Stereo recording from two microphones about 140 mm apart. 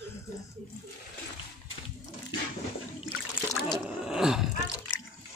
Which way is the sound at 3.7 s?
5° right (ahead or behind).